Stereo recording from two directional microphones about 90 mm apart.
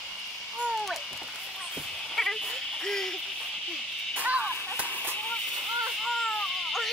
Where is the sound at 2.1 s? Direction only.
5° left (ahead or behind).